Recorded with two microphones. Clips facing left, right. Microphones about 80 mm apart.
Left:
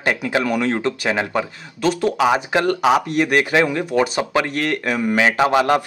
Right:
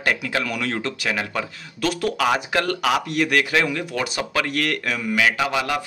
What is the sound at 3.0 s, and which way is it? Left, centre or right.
Speech, left.